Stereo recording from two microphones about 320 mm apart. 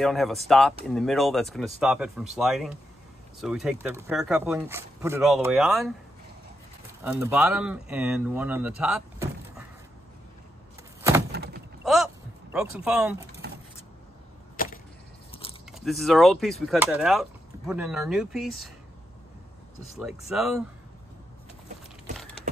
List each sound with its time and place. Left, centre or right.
0.0 s speech: centre
7.0 s speech: centre
11.3 s a sound: right
11.8 s a sound: centre
12.5 s speech: centre
13.4 s a sound: right
14.6 s arrow: left
15.7 s speech: centre
20.0 s speech: centre